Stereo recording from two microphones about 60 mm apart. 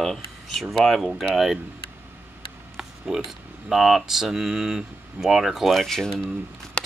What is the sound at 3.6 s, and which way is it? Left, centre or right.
Speech, centre.